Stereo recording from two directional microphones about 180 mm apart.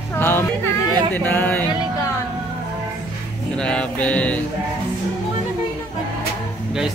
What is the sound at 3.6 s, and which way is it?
Speech, 5° left (ahead or behind).